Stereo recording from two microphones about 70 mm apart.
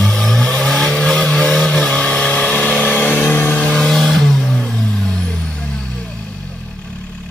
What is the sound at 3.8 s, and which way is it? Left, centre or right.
Vehicle, centre.